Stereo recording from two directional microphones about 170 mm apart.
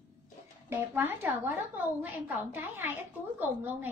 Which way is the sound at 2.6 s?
10° right (ahead or behind).